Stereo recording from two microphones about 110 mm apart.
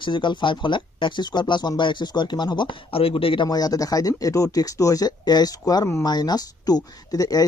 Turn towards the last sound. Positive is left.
turn(degrees=35)  # may be behind; listen again after turning